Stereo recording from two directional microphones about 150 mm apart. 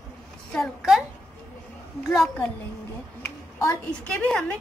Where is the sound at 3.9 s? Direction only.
5° left (ahead or behind).